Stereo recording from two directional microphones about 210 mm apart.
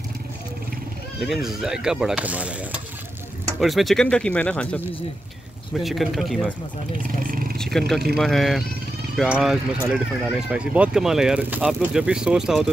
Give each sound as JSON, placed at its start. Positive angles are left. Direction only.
{"t": 1.2, "sound": "speech", "side_deg": 0}
{"t": 3.6, "sound": "speech", "side_deg": 0}
{"t": 7.2, "sound": "roaring cats", "side_deg": -45}
{"t": 7.5, "sound": "roaring cats", "side_deg": 0}
{"t": 8.2, "sound": "speech", "side_deg": 0}